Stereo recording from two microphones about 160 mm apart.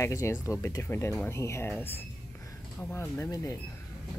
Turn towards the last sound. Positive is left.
turn(degrees=20)  # may be behind; listen again after turning